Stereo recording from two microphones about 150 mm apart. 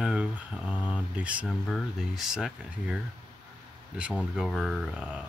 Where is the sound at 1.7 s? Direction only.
Centre (ahead or behind).